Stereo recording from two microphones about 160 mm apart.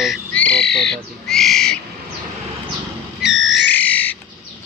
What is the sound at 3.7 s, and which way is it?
Bird, 10° left (ahead or behind).